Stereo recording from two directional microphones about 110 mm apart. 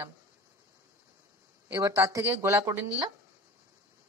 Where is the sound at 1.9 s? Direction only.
25° right (ahead or behind).